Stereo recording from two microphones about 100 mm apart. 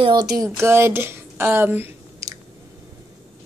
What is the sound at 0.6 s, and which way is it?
A woman's voice, 25° right (ahead or behind).